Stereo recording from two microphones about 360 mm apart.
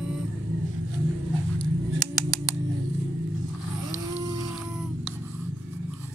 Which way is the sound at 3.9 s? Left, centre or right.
Centre.